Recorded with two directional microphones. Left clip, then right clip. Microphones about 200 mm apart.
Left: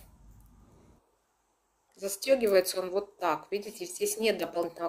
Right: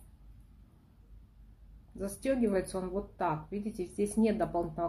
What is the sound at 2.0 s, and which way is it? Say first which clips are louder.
Speech: left 6 dB; 40° left (ahead or behind).